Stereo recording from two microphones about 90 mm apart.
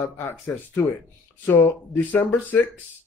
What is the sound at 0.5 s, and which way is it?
Speech, 15° left (ahead or behind).